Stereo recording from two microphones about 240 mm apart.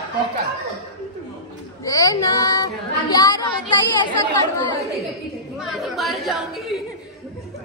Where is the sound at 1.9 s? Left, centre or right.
Centre.